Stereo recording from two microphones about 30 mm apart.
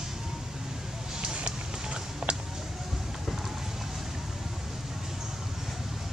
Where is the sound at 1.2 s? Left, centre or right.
Right.